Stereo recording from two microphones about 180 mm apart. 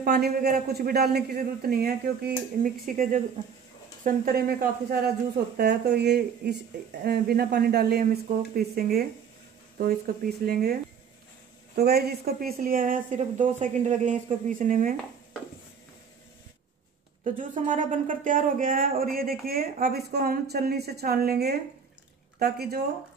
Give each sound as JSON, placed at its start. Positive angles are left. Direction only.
{"t": 0.0, "sound": "a man's voice", "side_deg": -60}
{"t": 10.4, "sound": "a man's voice", "side_deg": -55}
{"t": 11.7, "sound": "a woman's voice", "side_deg": -60}
{"t": 17.2, "sound": "a woman's voice", "side_deg": -45}